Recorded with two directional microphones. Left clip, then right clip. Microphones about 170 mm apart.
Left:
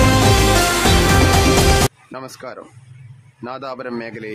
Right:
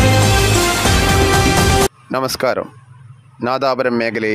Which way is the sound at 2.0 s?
55° right (ahead or behind).